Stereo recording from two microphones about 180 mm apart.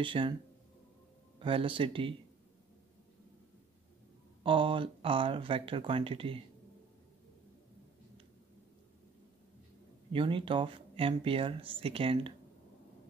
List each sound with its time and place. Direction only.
0.0 s speech: 30° right (ahead or behind)
1.4 s speech: 30° right (ahead or behind)
4.4 s speech: 30° right (ahead or behind)
10.1 s speech: 30° right (ahead or behind)